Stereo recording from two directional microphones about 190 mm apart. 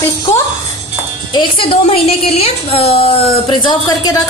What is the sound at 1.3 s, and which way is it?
A woman's voice, 25° left (ahead or behind).